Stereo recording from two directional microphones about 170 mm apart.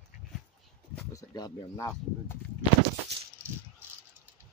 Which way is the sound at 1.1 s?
20° left (ahead or behind).